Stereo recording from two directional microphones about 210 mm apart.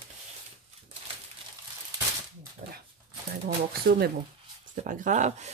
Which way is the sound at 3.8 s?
50° right (ahead or behind).